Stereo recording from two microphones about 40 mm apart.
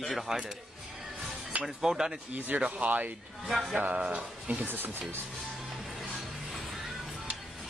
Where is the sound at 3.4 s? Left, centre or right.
Centre.